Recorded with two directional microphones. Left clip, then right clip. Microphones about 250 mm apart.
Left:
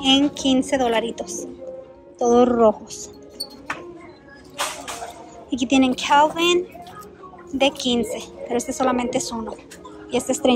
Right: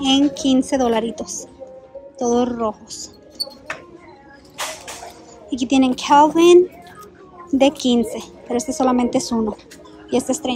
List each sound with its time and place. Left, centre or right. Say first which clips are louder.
0.0 s a woman's voice: right 1 dB; centre
5.5 s a woman's voice: right 1 dB; centre